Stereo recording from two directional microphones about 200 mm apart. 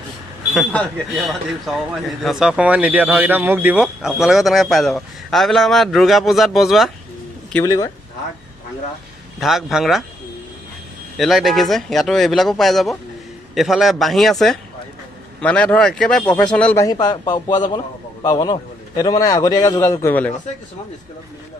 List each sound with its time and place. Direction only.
0.6 s a man's voice: centre (ahead or behind)
7.5 s speech: 15° left (ahead or behind)
9.4 s a man's voice: centre (ahead or behind)
11.1 s a man's voice: centre (ahead or behind)
16.8 s a man's voice: 20° left (ahead or behind)